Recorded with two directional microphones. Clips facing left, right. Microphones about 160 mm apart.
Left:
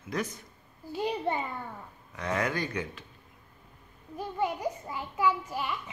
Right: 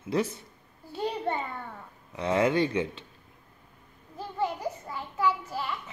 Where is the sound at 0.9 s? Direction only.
10° left (ahead or behind).